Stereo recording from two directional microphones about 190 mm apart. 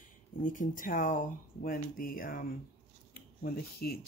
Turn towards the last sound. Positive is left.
turn(degrees=55)  # may be behind; listen again after turning